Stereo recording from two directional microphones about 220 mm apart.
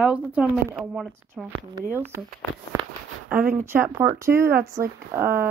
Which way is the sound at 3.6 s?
10° right (ahead or behind).